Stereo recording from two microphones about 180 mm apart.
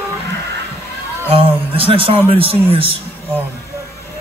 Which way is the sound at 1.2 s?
30° right (ahead or behind).